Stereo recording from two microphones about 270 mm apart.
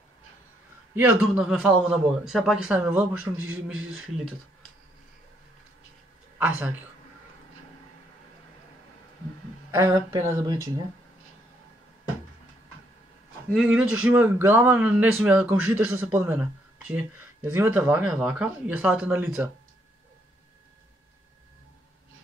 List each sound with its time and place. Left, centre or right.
0.9 s speech: centre
3.7 s speech: right
9.7 s speech: centre
13.5 s speech: centre